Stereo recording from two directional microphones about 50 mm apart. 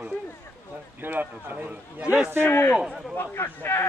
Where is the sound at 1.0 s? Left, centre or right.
Right.